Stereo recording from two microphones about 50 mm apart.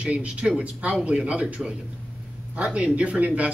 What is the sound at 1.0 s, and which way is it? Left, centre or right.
Speech, centre.